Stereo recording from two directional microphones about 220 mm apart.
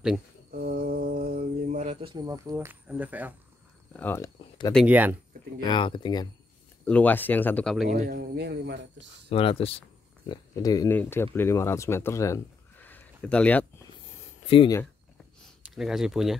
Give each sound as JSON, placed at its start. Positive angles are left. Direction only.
{"t": 0.5, "sound": "mantra", "side_deg": -40}
{"t": 2.1, "sound": "speech", "side_deg": -15}
{"t": 3.9, "sound": "speech", "side_deg": 10}
{"t": 4.7, "sound": "speech", "side_deg": -5}
{"t": 5.6, "sound": "speech", "side_deg": 20}
{"t": 6.8, "sound": "speech", "side_deg": 5}
{"t": 7.9, "sound": "speech", "side_deg": -35}
{"t": 8.4, "sound": "speech", "side_deg": -50}
{"t": 9.3, "sound": "speech", "side_deg": 25}
{"t": 14.5, "sound": "speech", "side_deg": 25}
{"t": 15.7, "sound": "speech", "side_deg": 0}